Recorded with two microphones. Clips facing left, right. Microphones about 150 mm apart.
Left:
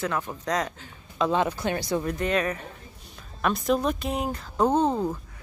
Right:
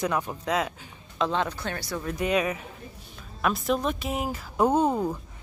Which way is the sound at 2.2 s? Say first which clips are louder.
Even; 10° right (ahead or behind).